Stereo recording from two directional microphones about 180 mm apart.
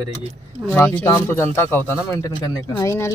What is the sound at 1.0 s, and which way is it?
Speech, 15° left (ahead or behind).